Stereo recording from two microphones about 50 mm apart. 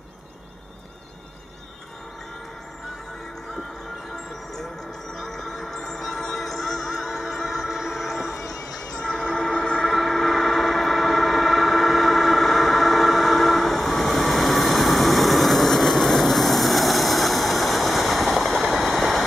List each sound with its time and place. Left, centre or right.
5.1 s music: centre
8.9 s train: centre
9.8 s train: centre